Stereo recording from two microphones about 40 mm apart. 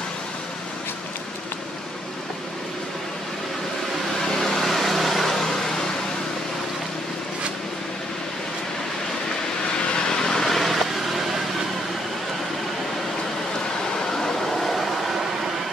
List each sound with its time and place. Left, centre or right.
4.4 s vehicle: centre
9.9 s vehicle: centre
10.6 s vehicle: centre
14.1 s train: centre